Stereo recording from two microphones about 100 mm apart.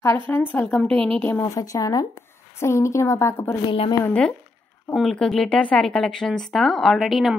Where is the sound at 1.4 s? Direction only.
35° left (ahead or behind).